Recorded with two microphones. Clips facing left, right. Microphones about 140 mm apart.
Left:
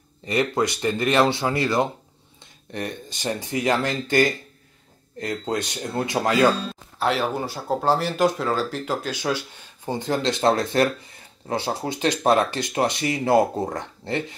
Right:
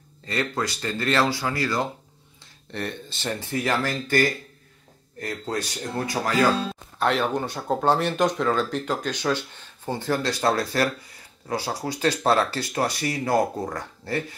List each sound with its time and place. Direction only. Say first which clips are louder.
0.2 s speech: left 5 dB; 20° left (ahead or behind)
7.0 s speech: even; 5° left (ahead or behind); by 14.2 s 20° left (ahead or behind)